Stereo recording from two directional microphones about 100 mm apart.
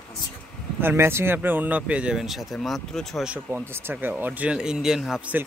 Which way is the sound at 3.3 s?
15° right (ahead or behind).